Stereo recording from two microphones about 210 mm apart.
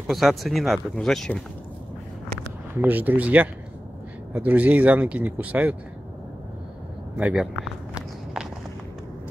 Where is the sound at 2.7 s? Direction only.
10° right (ahead or behind).